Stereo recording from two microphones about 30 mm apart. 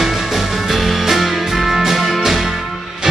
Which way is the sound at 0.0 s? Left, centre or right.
Centre.